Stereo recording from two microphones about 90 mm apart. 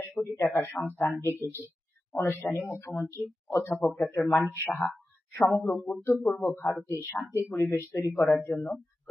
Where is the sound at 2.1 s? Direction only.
30° left (ahead or behind).